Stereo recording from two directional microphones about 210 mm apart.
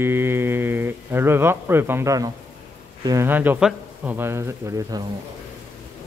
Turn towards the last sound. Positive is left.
turn(degrees=-15)  # may be behind; listen again after turning